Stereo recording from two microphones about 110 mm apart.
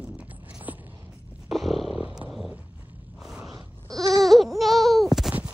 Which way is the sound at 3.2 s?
5° right (ahead or behind).